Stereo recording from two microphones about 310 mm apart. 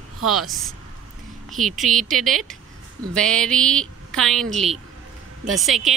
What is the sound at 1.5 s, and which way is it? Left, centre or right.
Speech, centre.